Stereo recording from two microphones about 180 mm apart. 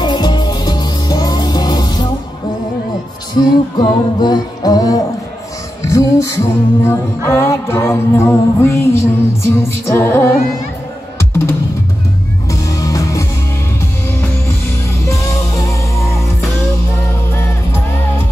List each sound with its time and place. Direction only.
0.0 s music: 25° left (ahead or behind)
3.3 s music: 25° left (ahead or behind)
11.1 s drum: 10° left (ahead or behind)
12.4 s music: 20° left (ahead or behind)
15.0 s music: 15° left (ahead or behind)
17.3 s music: 15° left (ahead or behind)